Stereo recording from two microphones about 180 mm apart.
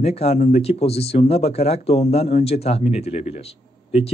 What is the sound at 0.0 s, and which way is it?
Speech, 35° left (ahead or behind).